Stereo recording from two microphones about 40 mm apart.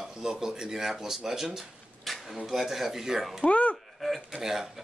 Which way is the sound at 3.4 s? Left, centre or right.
Left.